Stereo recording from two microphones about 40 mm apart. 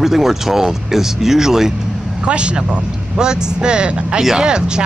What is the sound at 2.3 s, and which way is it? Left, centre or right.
Speech, right.